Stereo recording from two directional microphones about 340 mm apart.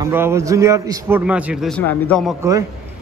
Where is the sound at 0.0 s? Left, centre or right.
Centre.